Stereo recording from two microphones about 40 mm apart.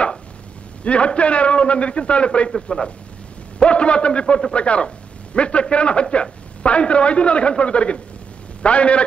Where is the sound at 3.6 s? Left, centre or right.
Left.